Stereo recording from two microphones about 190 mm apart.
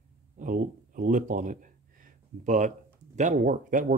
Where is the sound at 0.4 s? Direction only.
45° right (ahead or behind).